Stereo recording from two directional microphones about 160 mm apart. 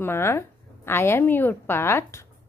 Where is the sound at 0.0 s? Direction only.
15° left (ahead or behind).